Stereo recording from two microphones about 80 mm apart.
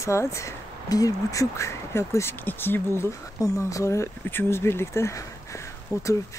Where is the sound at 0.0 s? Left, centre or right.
Left.